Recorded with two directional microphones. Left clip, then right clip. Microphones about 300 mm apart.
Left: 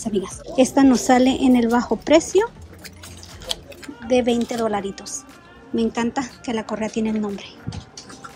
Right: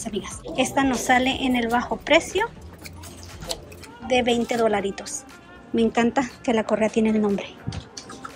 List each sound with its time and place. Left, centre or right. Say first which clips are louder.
0.0 s a woman's voice: left 5 dB; centre
4.1 s a woman's voice: left 2 dB; centre